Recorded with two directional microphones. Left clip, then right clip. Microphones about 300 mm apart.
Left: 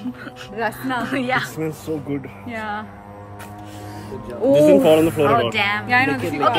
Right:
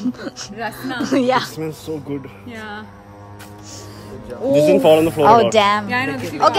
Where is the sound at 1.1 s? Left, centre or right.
Centre.